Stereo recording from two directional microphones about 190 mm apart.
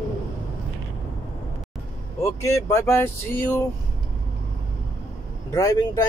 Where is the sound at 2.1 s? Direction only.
15° left (ahead or behind).